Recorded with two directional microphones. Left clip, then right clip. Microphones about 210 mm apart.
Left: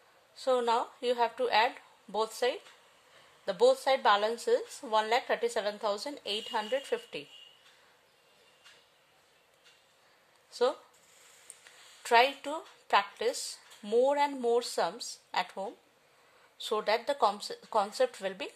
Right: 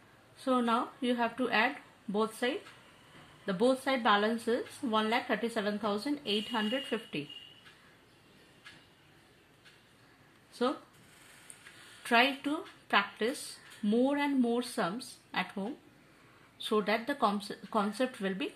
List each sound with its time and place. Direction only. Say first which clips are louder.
0.4 s speech: left 2 dB; 60° left (ahead or behind)
12.0 s speech: left 2 dB; 55° left (ahead or behind)
16.5 s speech: left 1 dB; 55° left (ahead or behind)